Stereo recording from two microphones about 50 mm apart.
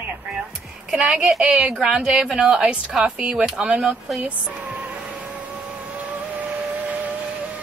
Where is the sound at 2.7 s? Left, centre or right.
Right.